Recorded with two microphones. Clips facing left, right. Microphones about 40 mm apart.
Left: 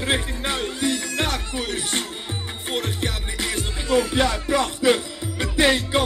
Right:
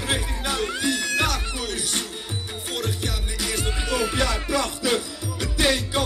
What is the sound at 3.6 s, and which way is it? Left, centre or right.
Music, right.